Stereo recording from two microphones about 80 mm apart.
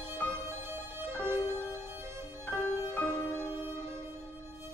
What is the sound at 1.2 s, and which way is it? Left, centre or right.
Music, right.